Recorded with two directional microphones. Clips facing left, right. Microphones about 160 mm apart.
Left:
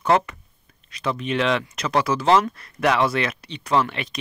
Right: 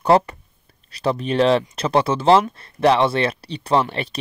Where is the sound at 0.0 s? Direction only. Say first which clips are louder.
Right 4 dB; 35° right (ahead or behind).